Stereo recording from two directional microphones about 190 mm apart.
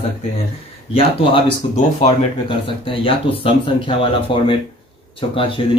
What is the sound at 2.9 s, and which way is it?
Speech, 30° left (ahead or behind).